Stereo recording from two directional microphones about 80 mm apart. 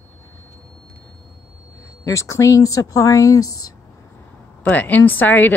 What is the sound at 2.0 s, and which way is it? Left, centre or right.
Speech, left.